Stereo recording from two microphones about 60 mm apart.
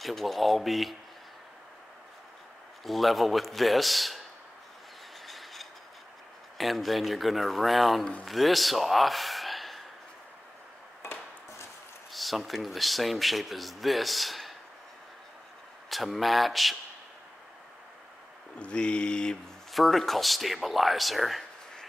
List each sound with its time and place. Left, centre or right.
0.0 s speech: centre
2.8 s speech: centre
5.2 s mechanisms: centre
6.6 s speech: centre
12.1 s speech: centre
15.9 s speech: centre
18.6 s mantra: centre
19.7 s speech: centre